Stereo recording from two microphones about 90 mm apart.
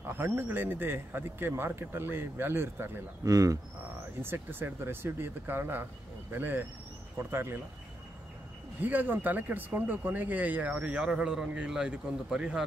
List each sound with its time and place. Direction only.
0.2 s speech: 25° right (ahead or behind)
3.3 s speech: 40° right (ahead or behind)
4.2 s speech: 25° right (ahead or behind)
8.8 s speech: 20° right (ahead or behind)